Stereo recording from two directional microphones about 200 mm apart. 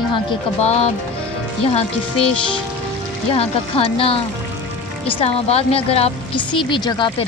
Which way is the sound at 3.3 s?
30° left (ahead or behind).